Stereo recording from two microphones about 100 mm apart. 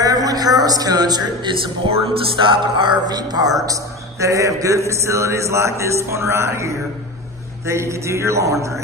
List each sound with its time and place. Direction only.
0.0 s a man's voice: 40° right (ahead or behind)
1.9 s music: 55° right (ahead or behind)
3.6 s a man's voice: 35° right (ahead or behind)